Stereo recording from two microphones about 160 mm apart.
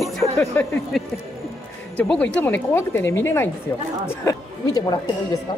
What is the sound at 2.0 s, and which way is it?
Speech, 10° left (ahead or behind).